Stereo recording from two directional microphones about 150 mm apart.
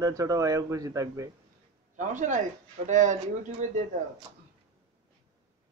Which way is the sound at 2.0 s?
55° right (ahead or behind).